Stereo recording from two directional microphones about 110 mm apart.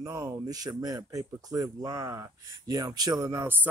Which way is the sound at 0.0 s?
25° right (ahead or behind).